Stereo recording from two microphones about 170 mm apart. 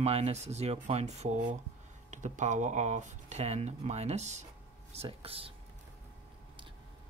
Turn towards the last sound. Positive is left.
turn(degrees=-35)  # may be behind; listen again after turning